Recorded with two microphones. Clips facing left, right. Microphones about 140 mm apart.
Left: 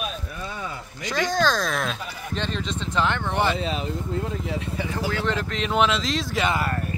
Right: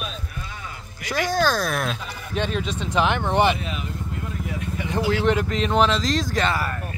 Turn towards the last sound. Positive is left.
turn(degrees=20)  # may be behind; listen again after turning